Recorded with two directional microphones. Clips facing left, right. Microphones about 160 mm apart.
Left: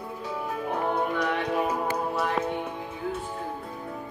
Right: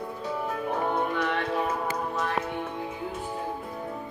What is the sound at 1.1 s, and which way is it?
Music, 10° left (ahead or behind).